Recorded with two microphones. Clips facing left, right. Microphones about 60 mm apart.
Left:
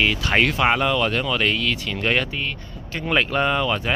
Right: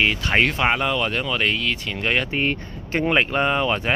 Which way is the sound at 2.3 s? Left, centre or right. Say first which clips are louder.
Right 5 dB; right.